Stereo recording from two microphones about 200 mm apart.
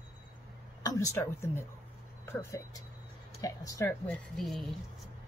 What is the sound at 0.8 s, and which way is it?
Speech, 15° left (ahead or behind).